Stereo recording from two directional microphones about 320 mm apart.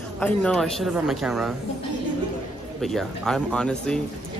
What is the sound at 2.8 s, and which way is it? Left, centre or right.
Speech, centre.